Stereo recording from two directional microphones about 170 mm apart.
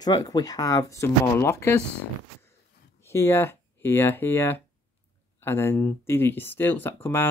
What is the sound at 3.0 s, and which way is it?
Speech, 15° left (ahead or behind).